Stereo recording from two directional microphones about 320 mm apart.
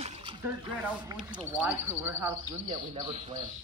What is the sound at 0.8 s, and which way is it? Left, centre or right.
Speech, centre.